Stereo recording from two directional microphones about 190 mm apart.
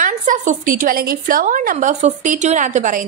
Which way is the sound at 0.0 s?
40° right (ahead or behind).